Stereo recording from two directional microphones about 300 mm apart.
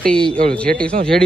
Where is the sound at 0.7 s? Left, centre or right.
Right.